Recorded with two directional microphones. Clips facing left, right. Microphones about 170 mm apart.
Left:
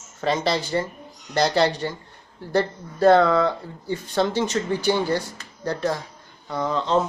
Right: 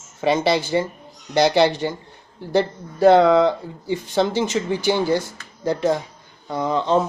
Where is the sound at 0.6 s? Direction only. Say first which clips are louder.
Right 4 dB; 20° right (ahead or behind).